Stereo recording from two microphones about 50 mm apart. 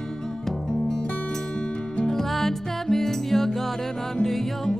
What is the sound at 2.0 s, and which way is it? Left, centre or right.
Music, centre.